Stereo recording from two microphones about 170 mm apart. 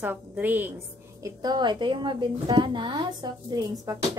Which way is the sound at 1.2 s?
25° right (ahead or behind).